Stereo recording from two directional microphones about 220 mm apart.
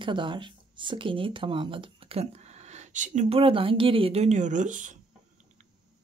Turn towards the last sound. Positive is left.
turn(degrees=-35)  # may be behind; listen again after turning